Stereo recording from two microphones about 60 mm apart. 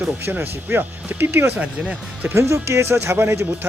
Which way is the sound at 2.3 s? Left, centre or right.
Right.